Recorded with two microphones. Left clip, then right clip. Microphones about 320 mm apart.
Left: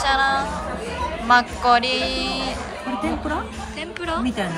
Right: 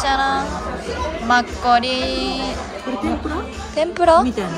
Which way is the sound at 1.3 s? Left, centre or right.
Centre.